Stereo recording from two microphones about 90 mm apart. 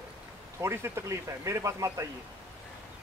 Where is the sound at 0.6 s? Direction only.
30° right (ahead or behind).